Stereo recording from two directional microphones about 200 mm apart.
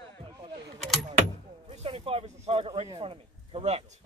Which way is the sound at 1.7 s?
30° right (ahead or behind).